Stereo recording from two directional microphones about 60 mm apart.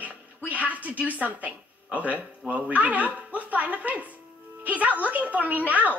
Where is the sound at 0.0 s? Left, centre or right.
Right.